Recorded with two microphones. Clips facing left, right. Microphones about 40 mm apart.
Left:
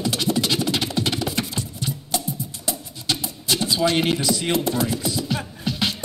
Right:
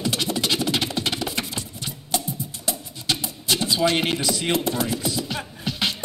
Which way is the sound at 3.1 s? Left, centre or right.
Right.